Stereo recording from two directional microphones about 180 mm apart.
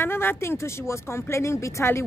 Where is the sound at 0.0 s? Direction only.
10° left (ahead or behind).